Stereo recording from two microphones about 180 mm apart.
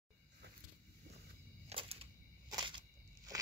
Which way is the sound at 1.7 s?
30° right (ahead or behind).